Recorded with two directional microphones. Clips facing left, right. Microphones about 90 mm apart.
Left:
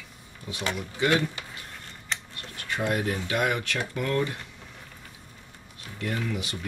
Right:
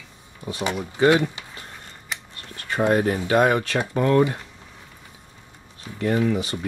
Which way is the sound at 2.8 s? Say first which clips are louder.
Right 8 dB; 30° right (ahead or behind).